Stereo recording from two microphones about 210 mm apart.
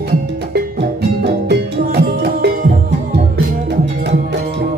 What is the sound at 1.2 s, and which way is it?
Music, 50° right (ahead or behind).